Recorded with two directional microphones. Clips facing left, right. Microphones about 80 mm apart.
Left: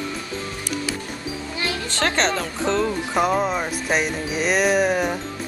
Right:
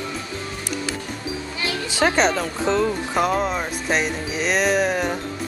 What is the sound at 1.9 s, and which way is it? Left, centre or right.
Speech, centre.